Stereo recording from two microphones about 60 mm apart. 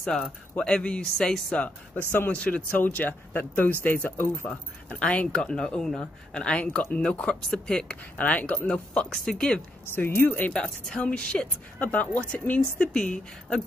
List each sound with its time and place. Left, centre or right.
0.0 s speech: centre
2.0 s speech: left; by 8.0 s centre
8.2 s speech: left
9.9 s speech: left
10.5 s speech: centre